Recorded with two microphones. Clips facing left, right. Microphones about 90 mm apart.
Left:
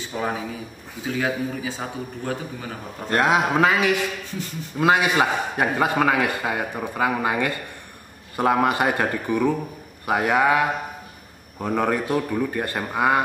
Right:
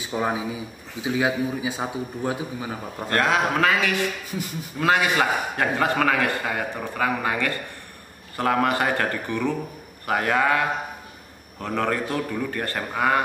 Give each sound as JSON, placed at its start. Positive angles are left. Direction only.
{"t": 0.0, "sound": "a man's voice", "side_deg": -15}
{"t": 3.1, "sound": "a man's voice", "side_deg": 20}